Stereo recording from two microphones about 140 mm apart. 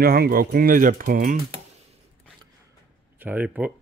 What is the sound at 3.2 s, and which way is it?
Speech, 10° right (ahead or behind).